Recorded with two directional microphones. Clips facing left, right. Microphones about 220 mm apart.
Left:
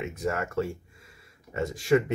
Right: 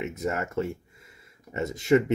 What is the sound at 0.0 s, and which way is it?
Speech, 20° right (ahead or behind).